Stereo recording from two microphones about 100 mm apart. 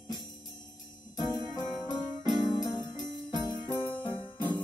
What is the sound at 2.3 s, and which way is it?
Music, 45° left (ahead or behind).